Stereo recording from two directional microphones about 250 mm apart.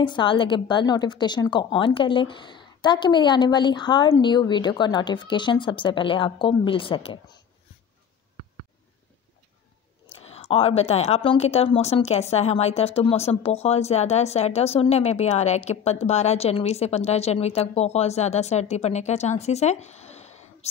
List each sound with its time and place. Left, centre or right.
0.0 s a woman's voice: centre
10.0 s a woman's voice: left